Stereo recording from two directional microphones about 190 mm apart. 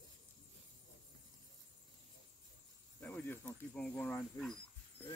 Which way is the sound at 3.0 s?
10° left (ahead or behind).